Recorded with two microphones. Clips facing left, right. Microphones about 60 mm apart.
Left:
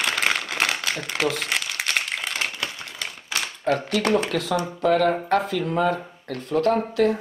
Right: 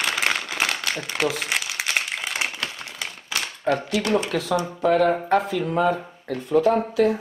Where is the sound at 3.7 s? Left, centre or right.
Centre.